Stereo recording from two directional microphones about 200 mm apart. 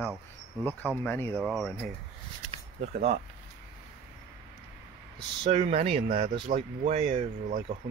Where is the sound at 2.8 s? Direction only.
35° right (ahead or behind).